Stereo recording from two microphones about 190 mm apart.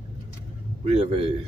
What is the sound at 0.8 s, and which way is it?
Speech, 35° right (ahead or behind).